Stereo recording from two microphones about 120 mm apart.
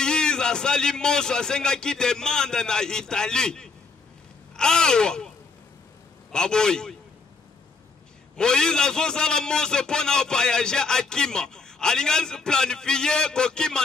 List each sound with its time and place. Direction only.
0.0 s a man's voice: 5° left (ahead or behind)
6.3 s a man's voice: 5° left (ahead or behind)
8.4 s a man's voice: 5° left (ahead or behind)